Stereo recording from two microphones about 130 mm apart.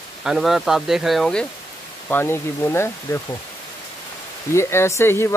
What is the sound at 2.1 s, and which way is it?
Speech, 15° left (ahead or behind).